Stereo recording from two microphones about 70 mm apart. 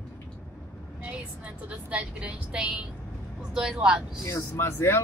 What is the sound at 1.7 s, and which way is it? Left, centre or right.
A woman's voice, centre.